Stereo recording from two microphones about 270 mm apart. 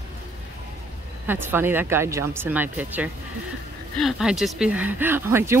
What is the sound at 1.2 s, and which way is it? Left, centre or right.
Speech, centre.